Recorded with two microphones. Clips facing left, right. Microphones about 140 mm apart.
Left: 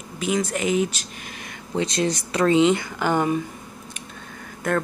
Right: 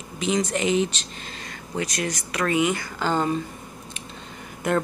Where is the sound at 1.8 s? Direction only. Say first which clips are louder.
Left 5 dB; 30° left (ahead or behind).